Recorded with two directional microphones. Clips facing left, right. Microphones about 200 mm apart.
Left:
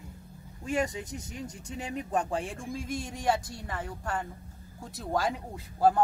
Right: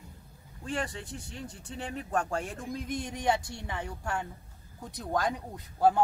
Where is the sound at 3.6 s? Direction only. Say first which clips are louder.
Even; centre (ahead or behind).